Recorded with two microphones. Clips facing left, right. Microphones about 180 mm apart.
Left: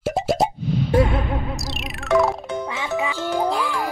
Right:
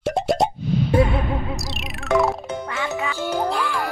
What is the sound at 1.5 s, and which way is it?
Speech, centre (ahead or behind).